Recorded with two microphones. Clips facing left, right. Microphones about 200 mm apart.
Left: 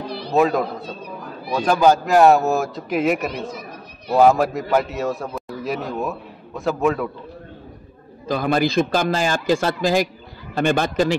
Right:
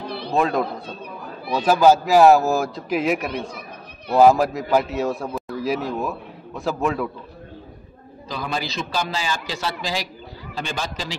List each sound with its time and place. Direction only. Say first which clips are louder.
0.3 s a man's voice: left 3 dB; 5° left (ahead or behind)
8.3 s a man's voice: left 9 dB; 50° left (ahead or behind)